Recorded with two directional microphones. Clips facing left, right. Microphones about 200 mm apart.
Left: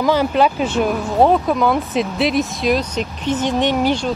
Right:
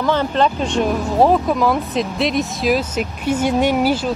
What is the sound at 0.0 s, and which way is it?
Speech, 10° left (ahead or behind).